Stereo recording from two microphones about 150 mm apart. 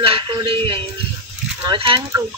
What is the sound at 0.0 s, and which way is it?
Speech, 35° right (ahead or behind).